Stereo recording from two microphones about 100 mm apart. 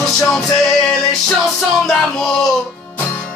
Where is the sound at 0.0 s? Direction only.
5° left (ahead or behind).